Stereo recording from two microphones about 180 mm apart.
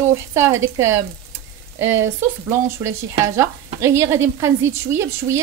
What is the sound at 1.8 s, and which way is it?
Speech, 90° right.